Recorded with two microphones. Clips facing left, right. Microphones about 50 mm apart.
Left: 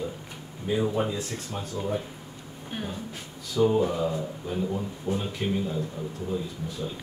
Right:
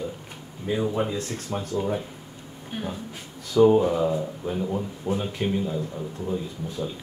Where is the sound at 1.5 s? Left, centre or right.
Centre.